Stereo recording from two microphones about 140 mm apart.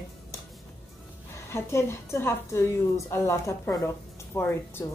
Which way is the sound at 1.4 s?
20° left (ahead or behind).